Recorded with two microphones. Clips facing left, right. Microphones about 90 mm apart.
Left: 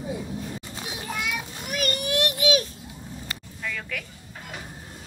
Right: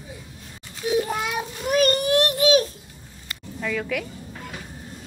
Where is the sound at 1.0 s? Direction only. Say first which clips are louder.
Right 4 dB; 35° right (ahead or behind).